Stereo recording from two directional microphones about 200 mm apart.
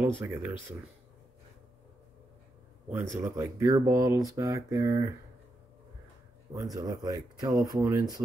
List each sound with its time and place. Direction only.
0.2 s speech: 10° right (ahead or behind)
2.9 s speech: 15° right (ahead or behind)
6.5 s speech: 15° right (ahead or behind)